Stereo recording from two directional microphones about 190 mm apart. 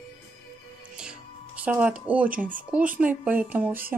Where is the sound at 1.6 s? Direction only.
10° right (ahead or behind).